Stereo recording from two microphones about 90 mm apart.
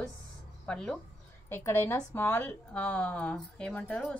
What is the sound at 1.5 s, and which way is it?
A woman's voice, 25° left (ahead or behind).